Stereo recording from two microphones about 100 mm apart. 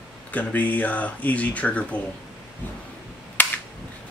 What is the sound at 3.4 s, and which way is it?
Cap gun, 15° left (ahead or behind).